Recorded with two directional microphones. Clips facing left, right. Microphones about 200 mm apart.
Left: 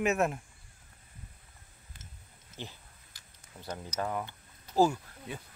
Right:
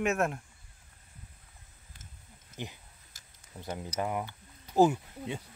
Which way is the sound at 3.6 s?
20° right (ahead or behind).